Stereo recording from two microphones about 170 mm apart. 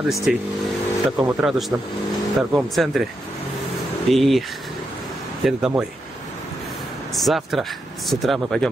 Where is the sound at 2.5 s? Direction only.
Centre (ahead or behind).